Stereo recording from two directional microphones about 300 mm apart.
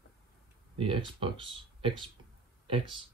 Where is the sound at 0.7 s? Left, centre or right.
Centre.